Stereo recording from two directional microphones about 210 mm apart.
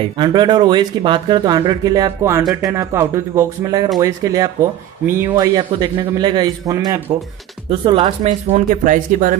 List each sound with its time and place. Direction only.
0.0 s speech: 20° right (ahead or behind); by 9.4 s 40° right (ahead or behind)